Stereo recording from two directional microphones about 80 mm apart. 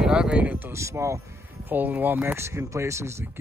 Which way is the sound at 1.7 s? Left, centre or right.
Right.